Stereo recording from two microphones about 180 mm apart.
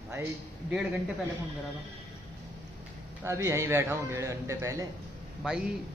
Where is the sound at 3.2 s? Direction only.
15° right (ahead or behind).